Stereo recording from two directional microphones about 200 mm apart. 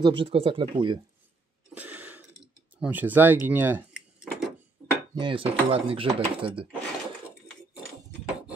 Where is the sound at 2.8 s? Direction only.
10° right (ahead or behind).